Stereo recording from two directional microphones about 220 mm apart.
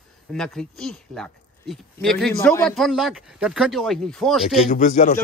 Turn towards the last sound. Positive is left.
turn(degrees=35)  # may be behind; listen again after turning